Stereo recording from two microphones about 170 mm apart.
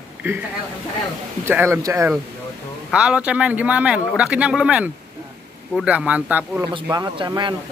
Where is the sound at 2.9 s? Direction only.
5° right (ahead or behind).